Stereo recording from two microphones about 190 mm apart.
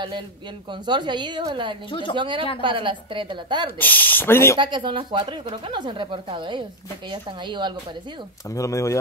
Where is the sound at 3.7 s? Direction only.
10° left (ahead or behind).